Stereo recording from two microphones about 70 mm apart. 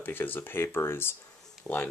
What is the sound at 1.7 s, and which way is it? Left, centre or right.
Speech, left.